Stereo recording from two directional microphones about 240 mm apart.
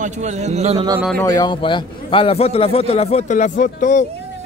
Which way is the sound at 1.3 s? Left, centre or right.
Centre.